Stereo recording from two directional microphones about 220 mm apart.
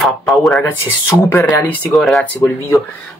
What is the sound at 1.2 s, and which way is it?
Speech, 10° left (ahead or behind).